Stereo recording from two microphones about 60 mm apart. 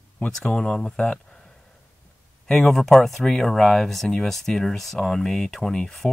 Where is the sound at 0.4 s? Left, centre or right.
Centre.